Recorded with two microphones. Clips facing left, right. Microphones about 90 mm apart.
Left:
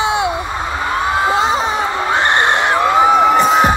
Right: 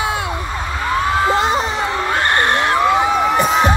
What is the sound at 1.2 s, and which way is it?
Crowd, 5° left (ahead or behind).